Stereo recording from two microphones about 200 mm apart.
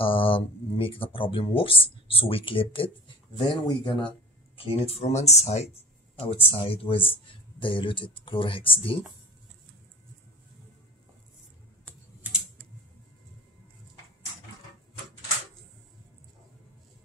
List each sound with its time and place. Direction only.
0.0 s speech: 25° left (ahead or behind)